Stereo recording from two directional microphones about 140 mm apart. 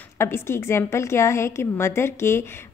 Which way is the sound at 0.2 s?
20° left (ahead or behind).